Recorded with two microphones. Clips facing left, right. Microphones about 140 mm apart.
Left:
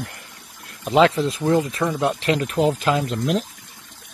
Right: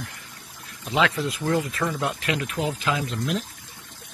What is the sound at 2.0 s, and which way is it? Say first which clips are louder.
Speech: left 6 dB; 30° left (ahead or behind).